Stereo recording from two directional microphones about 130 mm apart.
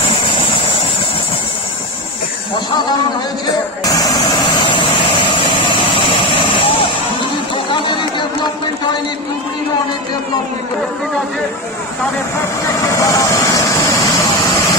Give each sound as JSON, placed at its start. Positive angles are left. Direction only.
{"t": 3.8, "sound": "speech", "side_deg": 25}
{"t": 5.3, "sound": "vehicle", "side_deg": 40}
{"t": 7.7, "sound": "chatter", "side_deg": 40}
{"t": 12.6, "sound": "vehicle", "side_deg": 25}